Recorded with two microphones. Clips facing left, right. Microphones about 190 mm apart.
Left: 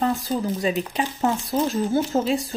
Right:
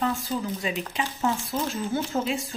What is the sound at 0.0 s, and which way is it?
Speech, 35° left (ahead or behind).